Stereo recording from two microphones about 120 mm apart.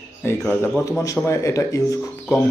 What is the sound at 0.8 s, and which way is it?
Speech, 30° left (ahead or behind).